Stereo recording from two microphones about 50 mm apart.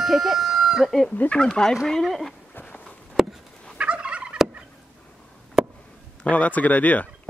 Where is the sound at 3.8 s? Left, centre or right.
Right.